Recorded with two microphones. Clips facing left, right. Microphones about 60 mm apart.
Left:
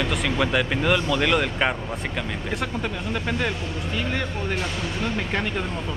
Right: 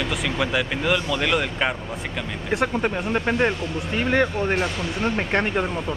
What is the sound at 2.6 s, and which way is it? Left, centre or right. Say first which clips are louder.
Speech: right 5 dB; right.